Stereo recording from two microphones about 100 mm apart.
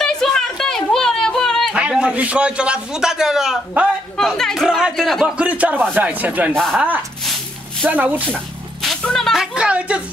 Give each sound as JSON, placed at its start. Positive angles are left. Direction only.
{"t": 0.0, "sound": "a sound", "side_deg": 5}
{"t": 1.8, "sound": "a man's voice", "side_deg": -10}
{"t": 4.2, "sound": "speech", "side_deg": 5}
{"t": 5.2, "sound": "a man's voice", "side_deg": -10}
{"t": 6.5, "sound": "speech", "side_deg": 0}
{"t": 7.8, "sound": "a man's voice", "side_deg": -15}
{"t": 8.8, "sound": "music", "side_deg": 5}